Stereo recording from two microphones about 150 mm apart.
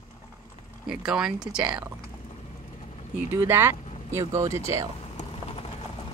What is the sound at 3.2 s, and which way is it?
Speech, 15° right (ahead or behind).